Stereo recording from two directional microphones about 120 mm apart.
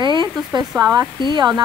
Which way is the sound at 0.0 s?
40° right (ahead or behind).